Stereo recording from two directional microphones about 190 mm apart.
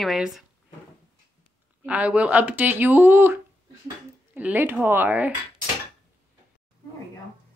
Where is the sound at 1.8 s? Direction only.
5° right (ahead or behind).